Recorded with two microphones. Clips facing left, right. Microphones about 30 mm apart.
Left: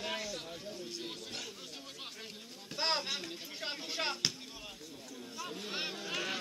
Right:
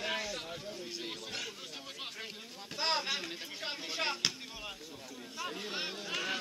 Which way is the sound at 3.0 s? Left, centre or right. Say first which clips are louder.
Right 3 dB; centre.